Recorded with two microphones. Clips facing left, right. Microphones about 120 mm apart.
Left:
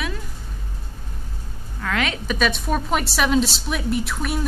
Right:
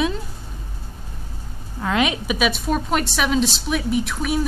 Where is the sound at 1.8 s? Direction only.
20° right (ahead or behind).